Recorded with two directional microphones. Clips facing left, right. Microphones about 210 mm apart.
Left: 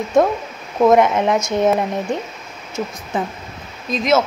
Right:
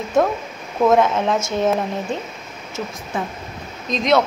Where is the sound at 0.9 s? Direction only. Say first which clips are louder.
Left 2 dB; 15° left (ahead or behind).